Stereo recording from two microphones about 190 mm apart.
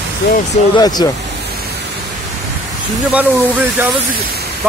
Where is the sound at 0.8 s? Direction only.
20° left (ahead or behind).